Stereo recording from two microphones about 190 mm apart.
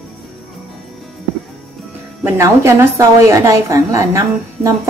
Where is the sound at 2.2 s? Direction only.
15° right (ahead or behind).